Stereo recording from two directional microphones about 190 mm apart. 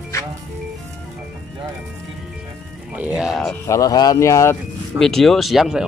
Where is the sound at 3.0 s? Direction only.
5° right (ahead or behind).